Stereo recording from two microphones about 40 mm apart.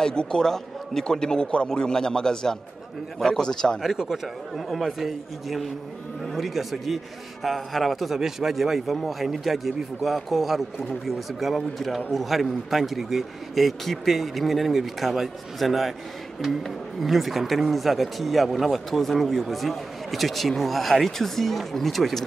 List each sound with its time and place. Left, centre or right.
0.0 s a man's voice: centre
3.8 s speech: centre